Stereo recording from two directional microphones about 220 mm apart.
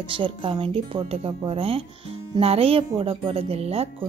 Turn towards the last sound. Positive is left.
turn(degrees=-25)  # may be behind; listen again after turning